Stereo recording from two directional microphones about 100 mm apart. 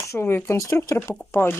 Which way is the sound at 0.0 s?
25° left (ahead or behind).